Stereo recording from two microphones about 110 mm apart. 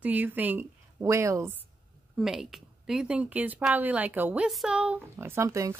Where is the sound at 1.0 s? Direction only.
25° right (ahead or behind).